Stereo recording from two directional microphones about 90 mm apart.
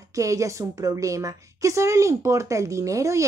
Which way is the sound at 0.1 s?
35° right (ahead or behind).